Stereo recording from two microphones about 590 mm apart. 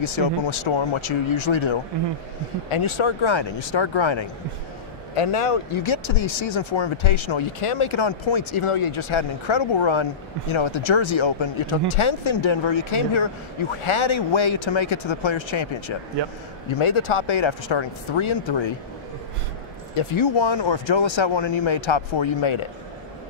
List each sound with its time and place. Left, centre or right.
0.0 s speech: left
5.1 s speech: left
16.7 s speech: left
20.0 s speech: left